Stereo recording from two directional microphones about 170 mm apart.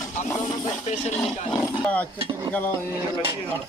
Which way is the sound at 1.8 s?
5° left (ahead or behind).